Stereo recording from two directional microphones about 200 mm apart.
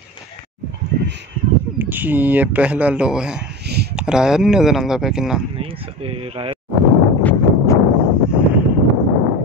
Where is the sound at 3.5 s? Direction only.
55° right (ahead or behind).